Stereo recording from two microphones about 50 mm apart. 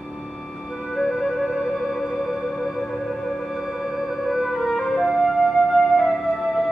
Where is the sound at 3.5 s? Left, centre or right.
Centre.